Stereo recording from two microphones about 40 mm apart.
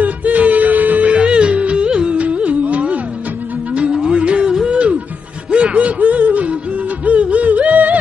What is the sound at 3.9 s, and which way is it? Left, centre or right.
Music, centre.